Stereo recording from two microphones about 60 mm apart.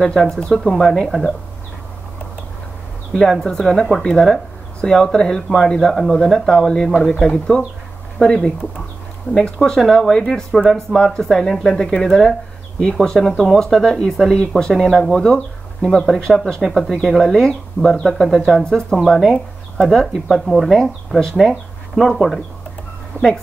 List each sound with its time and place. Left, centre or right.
0.4 s speech: centre
3.1 s speech: centre
4.8 s speech: centre
8.2 s speech: centre
23.2 s speech: left